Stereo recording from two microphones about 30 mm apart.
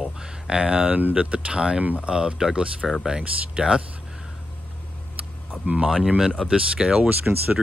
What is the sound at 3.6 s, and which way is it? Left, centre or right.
Speech, right.